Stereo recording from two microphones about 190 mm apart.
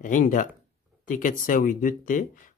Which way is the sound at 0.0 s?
45° left (ahead or behind).